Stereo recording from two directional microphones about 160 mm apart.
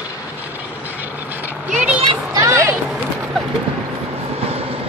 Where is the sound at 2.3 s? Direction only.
20° right (ahead or behind).